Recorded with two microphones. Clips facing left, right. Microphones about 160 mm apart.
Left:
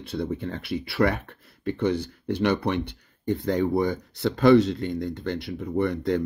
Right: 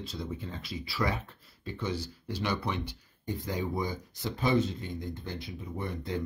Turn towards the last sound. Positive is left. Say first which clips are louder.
# left 11 dB
turn(degrees=85)